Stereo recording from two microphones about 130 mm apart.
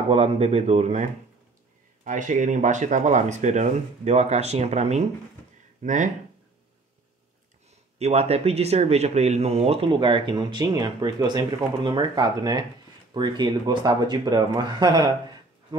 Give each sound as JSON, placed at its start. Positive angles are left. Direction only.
{"t": 0.1, "sound": "speech", "side_deg": -50}
{"t": 2.0, "sound": "speech", "side_deg": -75}
{"t": 5.8, "sound": "speech", "side_deg": -70}
{"t": 8.0, "sound": "speech", "side_deg": -55}